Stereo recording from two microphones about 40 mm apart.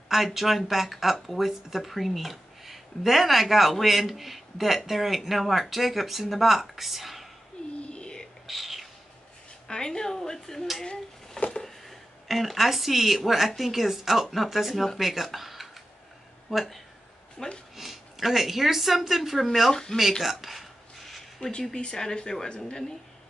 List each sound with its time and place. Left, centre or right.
0.1 s speech: centre
7.9 s whispering: left
8.5 s a sound: centre
9.7 s speech: centre
10.9 s a sound: left
11.6 s speech: centre
17.4 s speech: centre
17.7 s speech: centre
19.7 s speech: centre
20.0 s a sound: centre
21.7 s speech: centre